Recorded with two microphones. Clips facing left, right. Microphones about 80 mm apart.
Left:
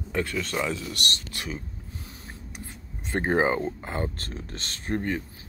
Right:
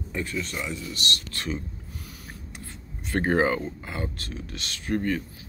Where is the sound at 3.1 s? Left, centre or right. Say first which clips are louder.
Right 1 dB; left.